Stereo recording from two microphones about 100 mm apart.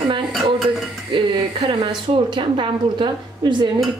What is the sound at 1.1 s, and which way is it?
A woman's voice, 55° right (ahead or behind).